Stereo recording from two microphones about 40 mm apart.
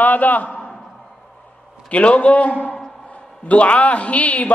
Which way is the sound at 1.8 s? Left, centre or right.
Left.